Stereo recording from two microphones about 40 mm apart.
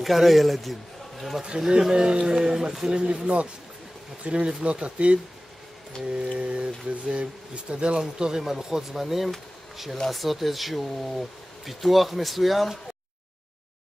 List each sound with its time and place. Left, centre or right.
0.0 s speech: centre
1.8 s speech: centre
8.0 s speech: centre